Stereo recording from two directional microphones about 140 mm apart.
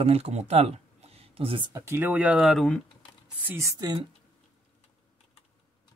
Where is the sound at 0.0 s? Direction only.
45° right (ahead or behind).